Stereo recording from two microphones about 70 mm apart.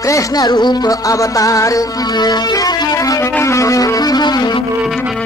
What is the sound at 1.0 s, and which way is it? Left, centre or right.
Music, left.